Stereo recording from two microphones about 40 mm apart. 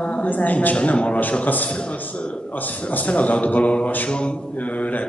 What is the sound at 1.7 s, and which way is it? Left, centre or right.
A man's voice, left.